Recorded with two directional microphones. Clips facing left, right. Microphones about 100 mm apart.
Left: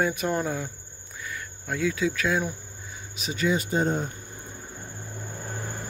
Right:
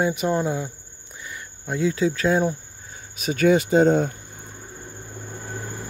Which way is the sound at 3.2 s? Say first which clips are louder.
Right 8 dB; 55° right (ahead or behind).